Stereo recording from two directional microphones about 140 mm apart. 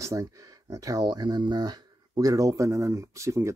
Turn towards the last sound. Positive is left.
turn(degrees=-20)  # may be behind; listen again after turning